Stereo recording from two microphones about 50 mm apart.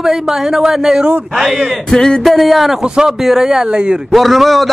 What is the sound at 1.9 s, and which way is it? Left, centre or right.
Speech, centre.